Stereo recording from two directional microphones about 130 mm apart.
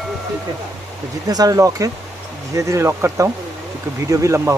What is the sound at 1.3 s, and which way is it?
Speech, 30° right (ahead or behind).